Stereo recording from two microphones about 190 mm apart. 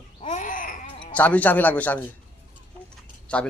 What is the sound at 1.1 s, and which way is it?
Speech, 10° left (ahead or behind).